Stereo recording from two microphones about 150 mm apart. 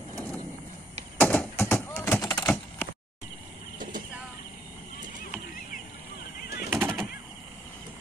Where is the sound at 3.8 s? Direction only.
65° right (ahead or behind).